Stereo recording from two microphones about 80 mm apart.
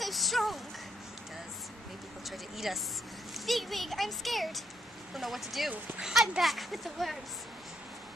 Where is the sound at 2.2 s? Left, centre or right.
Centre.